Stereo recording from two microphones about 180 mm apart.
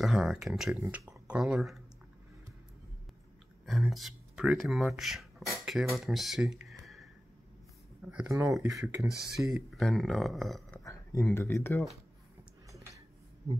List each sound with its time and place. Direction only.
0.0 s speech: centre (ahead or behind)
0.7 s speech: 15° right (ahead or behind)
3.6 s speech: centre (ahead or behind)
6.7 s a sound: centre (ahead or behind)
8.1 s speech: 10° right (ahead or behind)
10.8 s a sound: 15° left (ahead or behind)
11.3 s speech: 15° left (ahead or behind)